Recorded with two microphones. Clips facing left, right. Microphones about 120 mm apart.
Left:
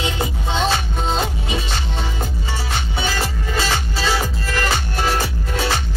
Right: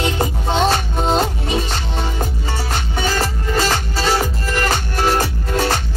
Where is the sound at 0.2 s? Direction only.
45° right (ahead or behind).